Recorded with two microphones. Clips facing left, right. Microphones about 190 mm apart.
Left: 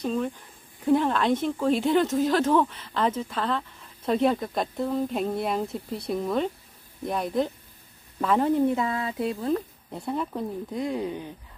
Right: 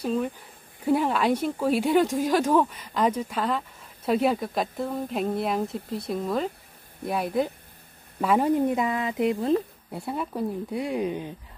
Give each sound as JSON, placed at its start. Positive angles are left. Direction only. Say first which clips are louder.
{"t": 0.0, "sound": "speech", "louder": "right 1 dB", "side_deg": -5}
{"t": 9.8, "sound": "speech", "louder": "left 1 dB", "side_deg": -5}